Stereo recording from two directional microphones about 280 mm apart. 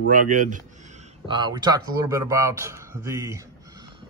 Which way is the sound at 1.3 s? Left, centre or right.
Centre.